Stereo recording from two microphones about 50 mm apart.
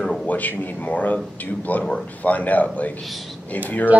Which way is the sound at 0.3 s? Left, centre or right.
Left.